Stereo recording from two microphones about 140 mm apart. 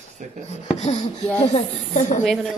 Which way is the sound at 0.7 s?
55° left (ahead or behind).